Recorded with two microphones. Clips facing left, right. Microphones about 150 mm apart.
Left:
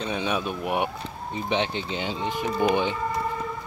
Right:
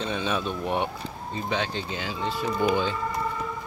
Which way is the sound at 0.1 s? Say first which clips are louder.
Left 3 dB; 10° left (ahead or behind).